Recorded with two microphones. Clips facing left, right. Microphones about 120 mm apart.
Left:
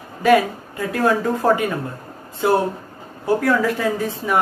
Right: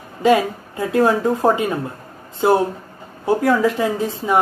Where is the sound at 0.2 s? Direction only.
25° right (ahead or behind).